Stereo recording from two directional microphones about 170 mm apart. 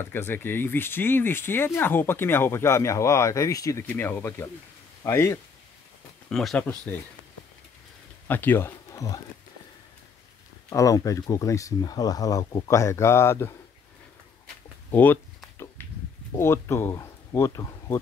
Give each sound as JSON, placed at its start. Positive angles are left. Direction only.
{"t": 0.0, "sound": "speech", "side_deg": 15}
{"t": 6.2, "sound": "speech", "side_deg": 5}
{"t": 8.3, "sound": "speech", "side_deg": 10}
{"t": 10.7, "sound": "speech", "side_deg": 20}
{"t": 14.9, "sound": "a sound", "side_deg": 10}
{"t": 16.3, "sound": "speech", "side_deg": 15}